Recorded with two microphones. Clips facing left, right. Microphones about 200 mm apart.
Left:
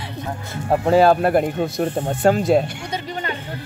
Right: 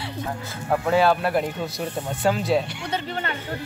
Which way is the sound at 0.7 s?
35° left (ahead or behind).